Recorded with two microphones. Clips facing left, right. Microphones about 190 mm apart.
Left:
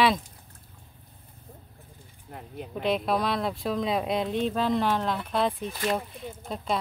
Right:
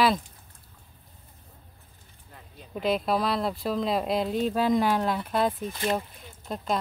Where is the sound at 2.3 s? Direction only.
60° left (ahead or behind).